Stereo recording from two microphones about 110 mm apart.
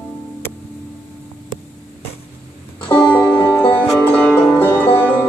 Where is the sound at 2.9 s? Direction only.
10° left (ahead or behind).